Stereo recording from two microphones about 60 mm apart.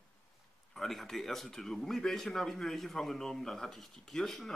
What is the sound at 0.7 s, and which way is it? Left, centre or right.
Speech, centre.